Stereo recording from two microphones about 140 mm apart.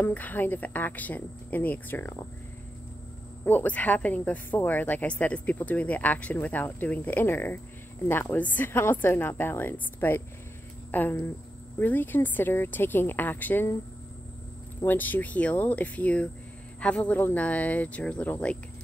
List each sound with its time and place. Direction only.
0.0 s speech: 10° left (ahead or behind)
3.4 s speech: 10° left (ahead or behind)
14.8 s speech: 15° left (ahead or behind)